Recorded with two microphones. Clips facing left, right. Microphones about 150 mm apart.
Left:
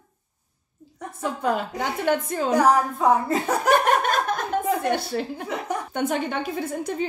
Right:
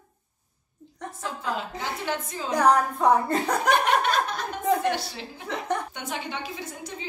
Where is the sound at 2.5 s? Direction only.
5° left (ahead or behind).